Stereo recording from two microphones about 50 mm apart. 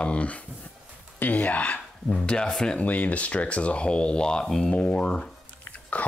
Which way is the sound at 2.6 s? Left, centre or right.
Left.